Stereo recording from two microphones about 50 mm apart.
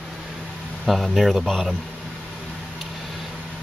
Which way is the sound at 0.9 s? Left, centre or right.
Centre.